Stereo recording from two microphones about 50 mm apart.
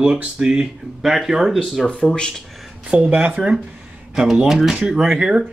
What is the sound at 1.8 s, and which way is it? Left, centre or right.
Speech, left.